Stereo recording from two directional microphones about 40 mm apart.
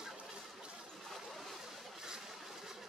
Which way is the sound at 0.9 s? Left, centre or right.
Centre.